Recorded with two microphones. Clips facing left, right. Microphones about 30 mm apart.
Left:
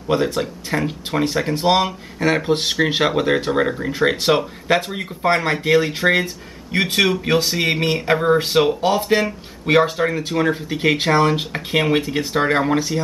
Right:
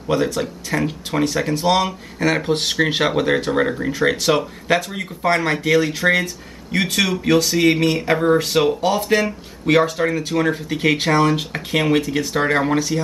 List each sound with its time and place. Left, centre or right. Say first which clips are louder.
0.1 s speech: even; centre
1.9 s speech: even; centre
4.7 s speech: right 1 dB; left